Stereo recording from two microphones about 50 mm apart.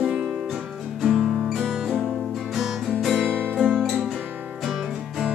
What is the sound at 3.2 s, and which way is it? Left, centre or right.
Music, right.